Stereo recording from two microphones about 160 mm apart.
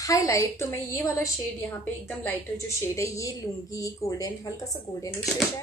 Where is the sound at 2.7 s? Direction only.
20° left (ahead or behind).